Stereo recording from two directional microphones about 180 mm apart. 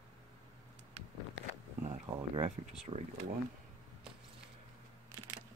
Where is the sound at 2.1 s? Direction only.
35° right (ahead or behind).